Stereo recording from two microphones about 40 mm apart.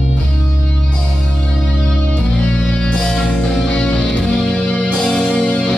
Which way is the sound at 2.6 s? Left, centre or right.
Left.